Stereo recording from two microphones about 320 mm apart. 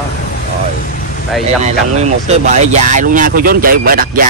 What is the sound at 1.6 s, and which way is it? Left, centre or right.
Speech, right.